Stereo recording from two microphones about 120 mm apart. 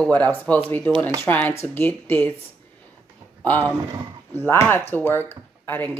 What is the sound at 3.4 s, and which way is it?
Speech, 15° left (ahead or behind).